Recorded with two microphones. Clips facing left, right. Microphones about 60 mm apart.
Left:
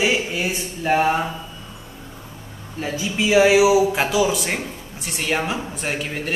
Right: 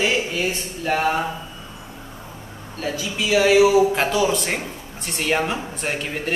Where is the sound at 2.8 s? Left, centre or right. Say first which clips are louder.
Left 2 dB; left.